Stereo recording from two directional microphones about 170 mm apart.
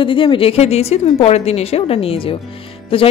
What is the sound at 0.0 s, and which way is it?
A woman's voice, 30° left (ahead or behind).